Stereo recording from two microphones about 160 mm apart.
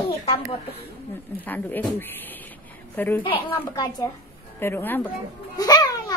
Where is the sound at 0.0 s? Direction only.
35° left (ahead or behind).